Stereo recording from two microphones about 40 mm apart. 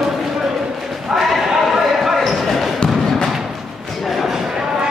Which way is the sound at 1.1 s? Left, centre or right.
Centre.